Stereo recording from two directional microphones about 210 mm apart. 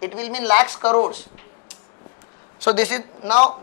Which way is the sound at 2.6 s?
10° left (ahead or behind).